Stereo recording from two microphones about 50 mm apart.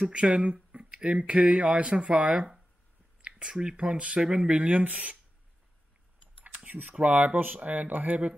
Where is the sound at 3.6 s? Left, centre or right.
Centre.